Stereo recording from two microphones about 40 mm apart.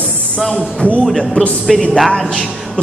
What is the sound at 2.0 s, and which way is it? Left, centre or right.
Speech, centre.